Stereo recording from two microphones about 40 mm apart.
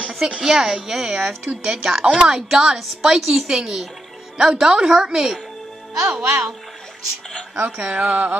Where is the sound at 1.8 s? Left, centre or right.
Centre.